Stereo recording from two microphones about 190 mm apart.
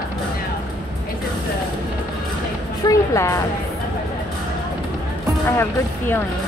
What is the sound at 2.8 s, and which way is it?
Speech, 15° left (ahead or behind).